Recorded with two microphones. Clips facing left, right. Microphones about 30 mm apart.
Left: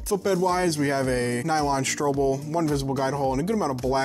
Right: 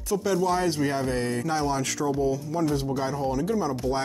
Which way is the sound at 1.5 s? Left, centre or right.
Left.